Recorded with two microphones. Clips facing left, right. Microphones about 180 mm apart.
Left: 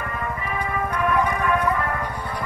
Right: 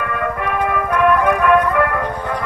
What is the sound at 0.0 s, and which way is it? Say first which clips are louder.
Music: right 8 dB; 70° right (ahead or behind).